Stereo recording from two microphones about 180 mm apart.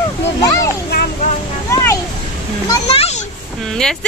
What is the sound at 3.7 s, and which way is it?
Speech, 5° left (ahead or behind).